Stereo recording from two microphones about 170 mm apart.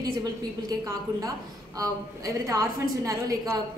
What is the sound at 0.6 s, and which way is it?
A woman's voice, 20° right (ahead or behind).